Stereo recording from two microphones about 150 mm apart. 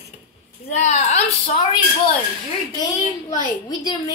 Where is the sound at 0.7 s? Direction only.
50° left (ahead or behind).